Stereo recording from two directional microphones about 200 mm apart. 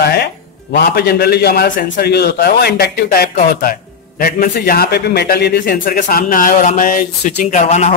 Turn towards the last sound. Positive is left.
turn(degrees=35)  # may be behind; listen again after turning